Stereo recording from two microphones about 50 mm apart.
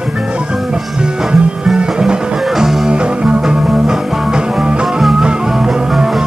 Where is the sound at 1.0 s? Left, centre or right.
Centre.